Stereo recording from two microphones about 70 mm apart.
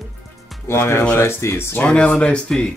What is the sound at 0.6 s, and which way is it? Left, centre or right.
Speech, left.